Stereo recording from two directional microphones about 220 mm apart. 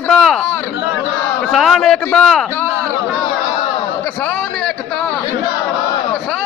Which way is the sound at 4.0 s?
5° left (ahead or behind).